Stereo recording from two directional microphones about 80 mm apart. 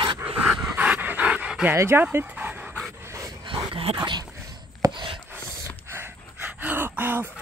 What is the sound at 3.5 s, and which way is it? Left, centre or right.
Dog, right.